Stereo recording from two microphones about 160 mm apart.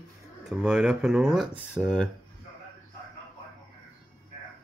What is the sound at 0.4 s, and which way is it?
Speech, 5° right (ahead or behind).